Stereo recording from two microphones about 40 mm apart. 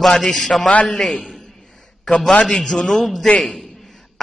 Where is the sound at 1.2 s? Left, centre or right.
Centre.